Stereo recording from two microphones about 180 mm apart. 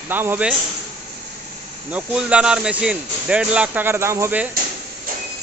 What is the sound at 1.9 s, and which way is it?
Speech, 5° right (ahead or behind).